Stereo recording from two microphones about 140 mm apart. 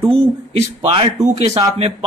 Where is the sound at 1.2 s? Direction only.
55° right (ahead or behind).